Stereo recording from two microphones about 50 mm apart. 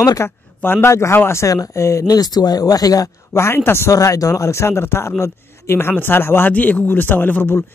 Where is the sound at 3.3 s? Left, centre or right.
Left.